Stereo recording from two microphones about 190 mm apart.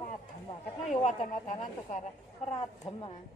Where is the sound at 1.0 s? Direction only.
40° left (ahead or behind).